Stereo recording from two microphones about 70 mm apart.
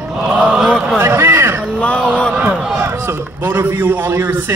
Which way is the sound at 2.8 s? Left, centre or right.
Right.